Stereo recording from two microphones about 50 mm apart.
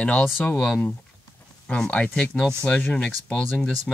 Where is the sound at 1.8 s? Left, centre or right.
Left.